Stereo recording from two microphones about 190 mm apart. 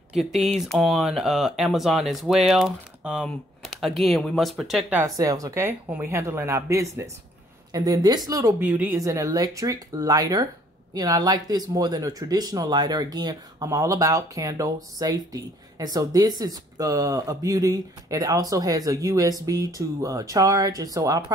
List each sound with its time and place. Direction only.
0.2 s speech: centre (ahead or behind)
5.1 s speech: 20° right (ahead or behind)